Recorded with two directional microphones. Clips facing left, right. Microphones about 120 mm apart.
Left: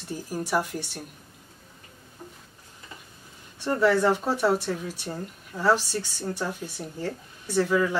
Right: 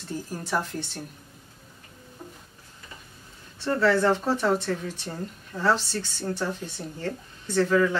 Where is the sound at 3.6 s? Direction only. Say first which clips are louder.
Even; 15° left (ahead or behind).